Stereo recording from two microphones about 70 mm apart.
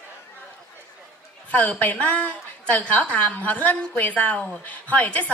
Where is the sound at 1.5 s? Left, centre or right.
Left.